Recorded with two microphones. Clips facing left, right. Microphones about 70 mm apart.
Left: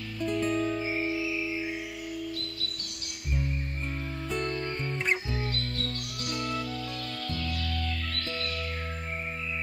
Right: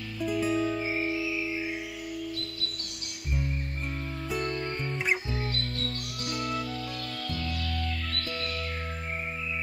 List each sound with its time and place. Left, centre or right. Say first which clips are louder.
0.2 s music: right 1 dB; centre
4.3 s music: even; centre